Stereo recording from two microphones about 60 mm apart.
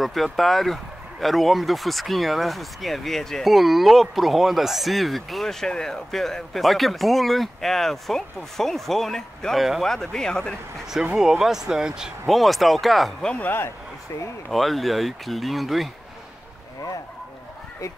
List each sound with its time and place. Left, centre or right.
0.0 s speech: centre
11.1 s speech: centre
12.3 s speech: centre
13.4 s speech: left
14.5 s speech: centre